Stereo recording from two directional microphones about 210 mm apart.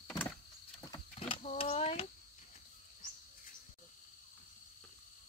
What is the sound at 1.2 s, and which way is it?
Speech, 30° left (ahead or behind).